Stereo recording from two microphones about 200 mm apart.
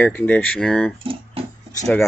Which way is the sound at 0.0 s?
5° left (ahead or behind).